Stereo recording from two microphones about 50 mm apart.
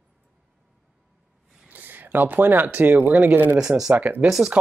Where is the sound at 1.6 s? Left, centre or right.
Right.